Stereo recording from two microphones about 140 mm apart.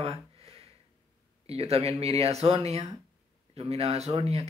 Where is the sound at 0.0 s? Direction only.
45° right (ahead or behind).